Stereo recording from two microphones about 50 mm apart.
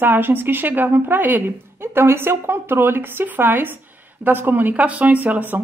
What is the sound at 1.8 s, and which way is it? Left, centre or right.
A woman's voice, right.